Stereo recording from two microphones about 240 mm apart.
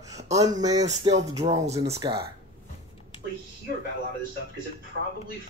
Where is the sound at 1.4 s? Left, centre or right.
Right.